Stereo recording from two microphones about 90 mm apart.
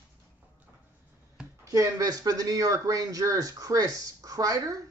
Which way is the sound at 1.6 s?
40° right (ahead or behind).